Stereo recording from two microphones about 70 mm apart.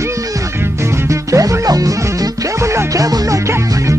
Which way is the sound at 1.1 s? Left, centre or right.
Right.